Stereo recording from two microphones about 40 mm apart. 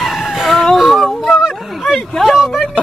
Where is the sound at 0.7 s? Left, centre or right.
Centre.